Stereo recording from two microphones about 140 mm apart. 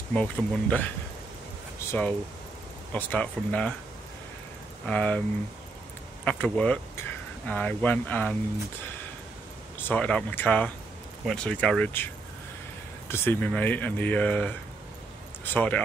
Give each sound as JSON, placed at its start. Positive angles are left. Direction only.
{"t": 0.1, "sound": "speech", "side_deg": 10}
{"t": 1.9, "sound": "speech", "side_deg": 10}
{"t": 4.8, "sound": "speech", "side_deg": 10}
{"t": 6.2, "sound": "speech", "side_deg": 10}
{"t": 9.8, "sound": "speech", "side_deg": 10}
{"t": 13.1, "sound": "speech", "side_deg": 15}
{"t": 15.5, "sound": "speech", "side_deg": 10}